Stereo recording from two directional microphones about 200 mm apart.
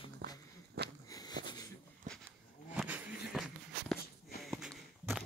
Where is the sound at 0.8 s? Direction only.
55° right (ahead or behind).